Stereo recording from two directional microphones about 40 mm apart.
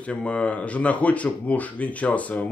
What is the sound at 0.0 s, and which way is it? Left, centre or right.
Speech, left.